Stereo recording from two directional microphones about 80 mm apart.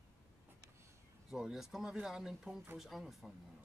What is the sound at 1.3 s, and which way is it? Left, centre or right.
Speech, centre.